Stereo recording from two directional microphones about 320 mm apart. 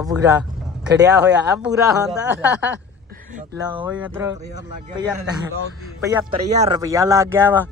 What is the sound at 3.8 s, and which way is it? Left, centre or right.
Speech, centre.